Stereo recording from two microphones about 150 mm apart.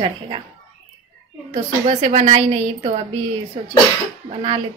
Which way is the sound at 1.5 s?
50° right (ahead or behind).